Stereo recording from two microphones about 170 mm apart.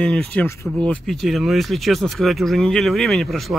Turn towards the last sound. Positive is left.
turn(degrees=0)  # may be behind; listen again after turning